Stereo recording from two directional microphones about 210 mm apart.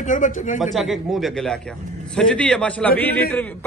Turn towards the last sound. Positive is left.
turn(degrees=10)  # may be behind; listen again after turning